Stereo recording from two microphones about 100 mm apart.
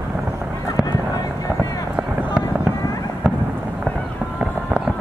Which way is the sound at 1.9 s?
10° right (ahead or behind).